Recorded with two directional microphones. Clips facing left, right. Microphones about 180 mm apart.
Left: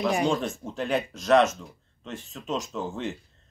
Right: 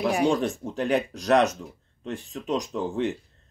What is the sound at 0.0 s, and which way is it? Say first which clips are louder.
Speech: right 2 dB; 10° right (ahead or behind).